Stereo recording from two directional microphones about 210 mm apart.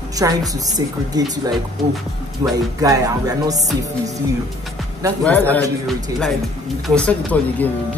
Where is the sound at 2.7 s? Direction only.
15° right (ahead or behind).